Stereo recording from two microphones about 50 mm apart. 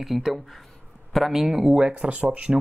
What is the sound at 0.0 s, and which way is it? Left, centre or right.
Speech, centre.